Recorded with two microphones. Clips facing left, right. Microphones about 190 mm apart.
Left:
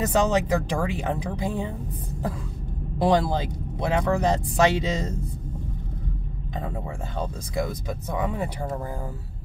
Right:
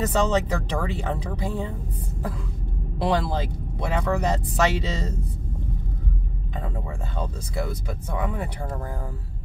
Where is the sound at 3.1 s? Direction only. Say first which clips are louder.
Left 2 dB; 15° left (ahead or behind).